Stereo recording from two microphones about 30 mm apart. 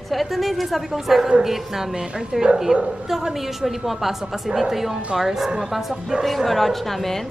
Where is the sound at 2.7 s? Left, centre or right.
Right.